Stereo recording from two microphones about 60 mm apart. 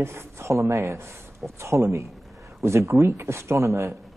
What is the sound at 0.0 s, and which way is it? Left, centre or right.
Speech, right.